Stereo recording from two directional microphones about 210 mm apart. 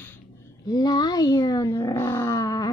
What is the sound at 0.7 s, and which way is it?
Speech, 20° left (ahead or behind).